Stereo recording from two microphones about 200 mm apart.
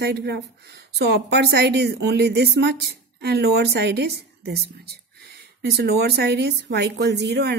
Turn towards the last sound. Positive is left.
turn(degrees=-55)  # may be behind; listen again after turning